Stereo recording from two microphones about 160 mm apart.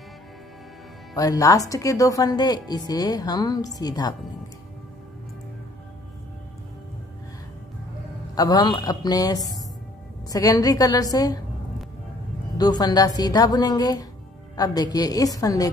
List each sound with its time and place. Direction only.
1.1 s a woman's voice: 20° left (ahead or behind)
8.4 s a woman's voice: 25° left (ahead or behind)
12.5 s a woman's voice: 25° left (ahead or behind)